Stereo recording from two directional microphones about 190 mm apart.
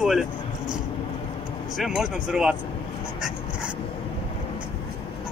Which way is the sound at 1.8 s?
Centre (ahead or behind).